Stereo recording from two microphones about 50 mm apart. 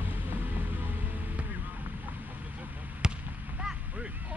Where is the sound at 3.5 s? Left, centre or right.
Centre.